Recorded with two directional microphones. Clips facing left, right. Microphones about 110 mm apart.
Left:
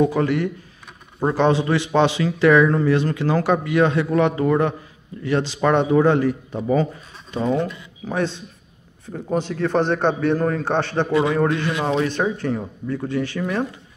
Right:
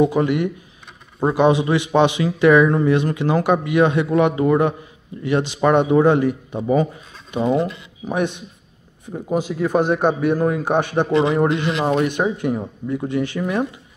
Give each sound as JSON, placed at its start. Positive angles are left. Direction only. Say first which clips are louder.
{"t": 0.0, "sound": "a man's voice", "louder": "right 2 dB", "side_deg": -15}